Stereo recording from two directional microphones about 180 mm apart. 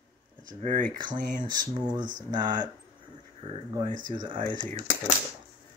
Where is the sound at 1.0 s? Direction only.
25° right (ahead or behind).